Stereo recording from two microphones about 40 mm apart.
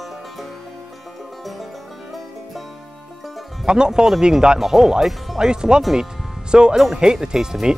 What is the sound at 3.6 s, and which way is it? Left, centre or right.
Speech, centre.